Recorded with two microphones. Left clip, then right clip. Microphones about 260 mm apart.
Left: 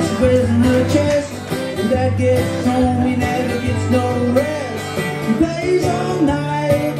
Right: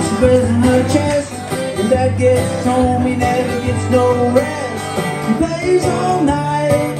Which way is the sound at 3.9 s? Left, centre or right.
Centre.